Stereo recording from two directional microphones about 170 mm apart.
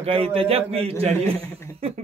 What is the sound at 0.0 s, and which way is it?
Speech, 35° right (ahead or behind).